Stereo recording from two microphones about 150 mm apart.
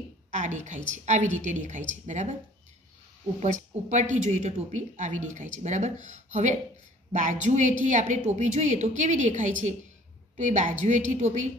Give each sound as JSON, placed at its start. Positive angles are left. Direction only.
{"t": 0.3, "sound": "a man's voice", "side_deg": -55}
{"t": 3.3, "sound": "a woman's voice", "side_deg": -55}